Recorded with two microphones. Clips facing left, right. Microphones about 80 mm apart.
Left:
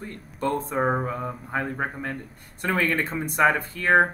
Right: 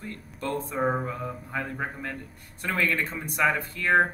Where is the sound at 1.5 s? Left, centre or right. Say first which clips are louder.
Left 5 dB; left.